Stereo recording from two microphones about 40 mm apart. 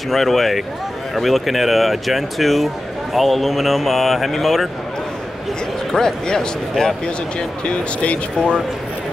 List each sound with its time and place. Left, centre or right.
0.1 s speech: centre
5.9 s speech: centre
7.3 s speech: left